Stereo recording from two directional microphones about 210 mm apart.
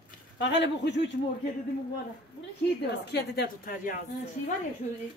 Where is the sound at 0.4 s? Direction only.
55° left (ahead or behind).